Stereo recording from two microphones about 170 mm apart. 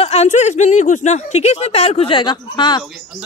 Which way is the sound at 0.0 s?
40° left (ahead or behind).